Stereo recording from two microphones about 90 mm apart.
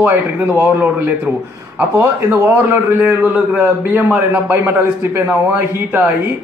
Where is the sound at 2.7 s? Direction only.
25° right (ahead or behind).